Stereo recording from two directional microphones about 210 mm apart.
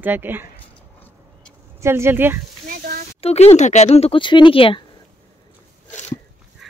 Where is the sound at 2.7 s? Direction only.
45° right (ahead or behind).